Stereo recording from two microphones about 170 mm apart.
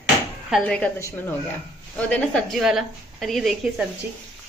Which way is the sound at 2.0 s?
5° left (ahead or behind).